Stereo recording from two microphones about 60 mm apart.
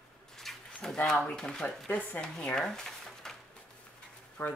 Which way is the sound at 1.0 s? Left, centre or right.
Centre.